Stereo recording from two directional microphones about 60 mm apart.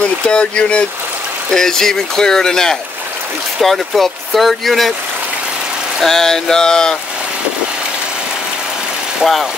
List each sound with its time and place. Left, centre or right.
0.0 s speech: centre
1.5 s speech: centre
6.0 s speech: centre
9.2 s speech: centre